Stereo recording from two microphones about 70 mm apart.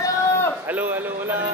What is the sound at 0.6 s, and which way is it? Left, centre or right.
Speech, right.